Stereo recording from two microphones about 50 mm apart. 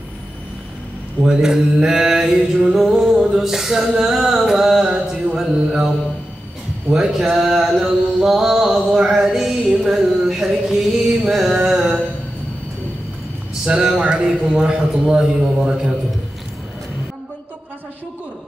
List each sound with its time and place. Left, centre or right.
1.2 s male singing: centre
6.9 s male singing: centre
9.2 s a sound: centre
11.3 s music: centre
13.7 s speech: centre
14.6 s male singing: centre